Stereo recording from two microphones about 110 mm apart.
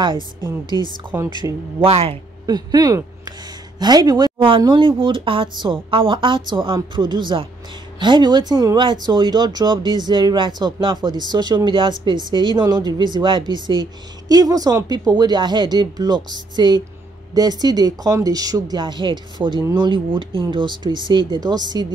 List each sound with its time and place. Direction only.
0.7 s speech: 35° left (ahead or behind)
1.3 s speech: 40° right (ahead or behind)
1.9 s a man's voice: 65° right (ahead or behind)
2.4 s speech: 35° right (ahead or behind)